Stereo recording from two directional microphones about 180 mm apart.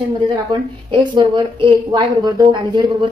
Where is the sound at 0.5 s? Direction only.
25° right (ahead or behind).